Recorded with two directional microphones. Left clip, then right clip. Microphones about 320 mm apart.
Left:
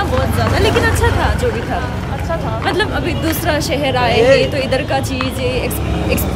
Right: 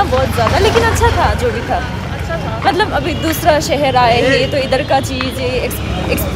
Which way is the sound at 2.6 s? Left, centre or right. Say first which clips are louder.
Right 6 dB; centre.